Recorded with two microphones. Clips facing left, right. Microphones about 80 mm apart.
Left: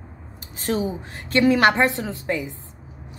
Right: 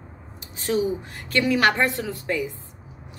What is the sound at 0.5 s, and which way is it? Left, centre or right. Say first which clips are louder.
A woman's voice: right 1 dB; left.